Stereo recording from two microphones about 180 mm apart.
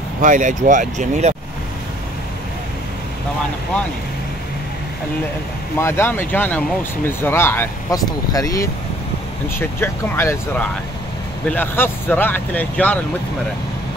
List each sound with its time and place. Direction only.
0.2 s speech: 45° right (ahead or behind)
5.8 s speech: 15° left (ahead or behind)